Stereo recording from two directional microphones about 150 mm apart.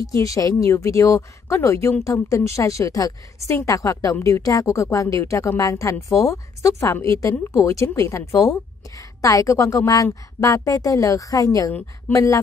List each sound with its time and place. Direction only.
0.0 s a woman's voice: 20° left (ahead or behind)